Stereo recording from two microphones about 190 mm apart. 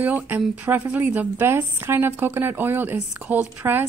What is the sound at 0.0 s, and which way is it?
A woman's voice, 10° right (ahead or behind).